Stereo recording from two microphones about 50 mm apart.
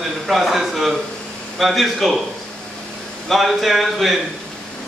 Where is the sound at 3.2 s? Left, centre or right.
Centre.